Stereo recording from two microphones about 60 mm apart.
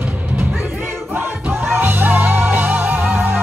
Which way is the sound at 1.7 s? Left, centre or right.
Right.